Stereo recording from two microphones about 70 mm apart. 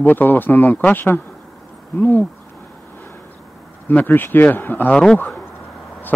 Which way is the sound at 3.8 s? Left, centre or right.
Left.